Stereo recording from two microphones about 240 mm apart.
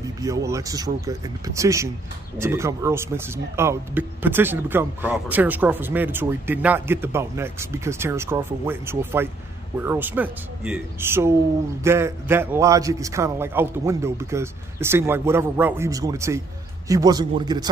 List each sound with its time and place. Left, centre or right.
0.2 s speech: centre